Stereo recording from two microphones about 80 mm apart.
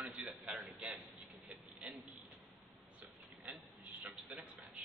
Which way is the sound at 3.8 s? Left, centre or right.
Centre.